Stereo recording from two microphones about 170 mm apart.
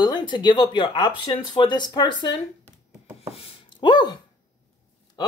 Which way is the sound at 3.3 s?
35° left (ahead or behind).